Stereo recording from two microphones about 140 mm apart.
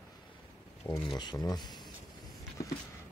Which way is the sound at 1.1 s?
30° left (ahead or behind).